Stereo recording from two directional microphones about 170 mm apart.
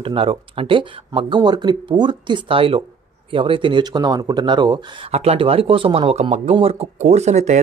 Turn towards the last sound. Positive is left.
turn(degrees=-40)  # may be behind; listen again after turning